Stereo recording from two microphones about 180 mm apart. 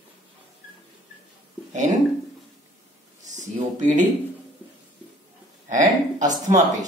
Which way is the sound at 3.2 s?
45° right (ahead or behind).